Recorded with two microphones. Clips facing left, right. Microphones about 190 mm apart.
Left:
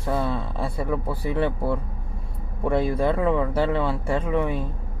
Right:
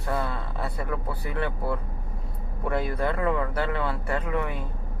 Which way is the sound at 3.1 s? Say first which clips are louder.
Left 4 dB; 15° left (ahead or behind).